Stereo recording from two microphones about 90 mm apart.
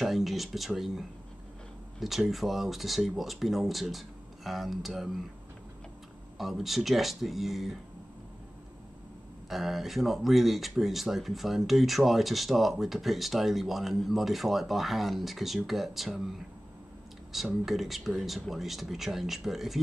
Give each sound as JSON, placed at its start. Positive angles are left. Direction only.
{"t": 0.0, "sound": "speech", "side_deg": 0}
{"t": 6.3, "sound": "speech", "side_deg": 0}
{"t": 9.5, "sound": "speech", "side_deg": 0}
{"t": 17.3, "sound": "speech", "side_deg": 0}